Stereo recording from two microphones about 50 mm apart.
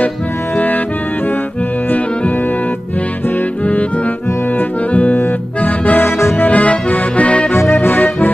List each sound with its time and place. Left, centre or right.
4.6 s accordion: left
5.9 s accordion: left
6.4 s accordion: left
7.7 s accordion: left